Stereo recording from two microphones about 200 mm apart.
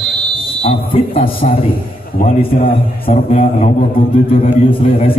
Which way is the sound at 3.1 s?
35° left (ahead or behind).